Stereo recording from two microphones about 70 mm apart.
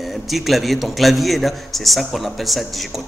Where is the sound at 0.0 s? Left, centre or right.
Centre.